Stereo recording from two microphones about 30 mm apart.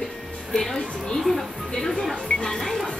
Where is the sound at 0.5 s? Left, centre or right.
Centre.